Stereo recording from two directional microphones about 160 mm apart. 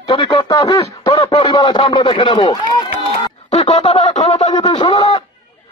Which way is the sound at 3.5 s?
40° left (ahead or behind).